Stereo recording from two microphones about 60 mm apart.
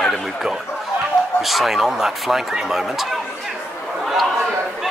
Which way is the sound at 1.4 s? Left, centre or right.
Centre.